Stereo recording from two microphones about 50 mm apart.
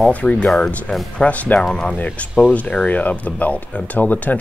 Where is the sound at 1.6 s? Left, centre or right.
Centre.